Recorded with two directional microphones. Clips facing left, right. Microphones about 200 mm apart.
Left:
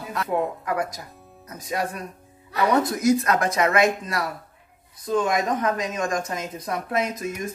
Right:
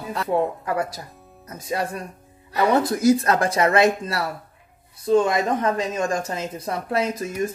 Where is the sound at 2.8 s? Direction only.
30° right (ahead or behind).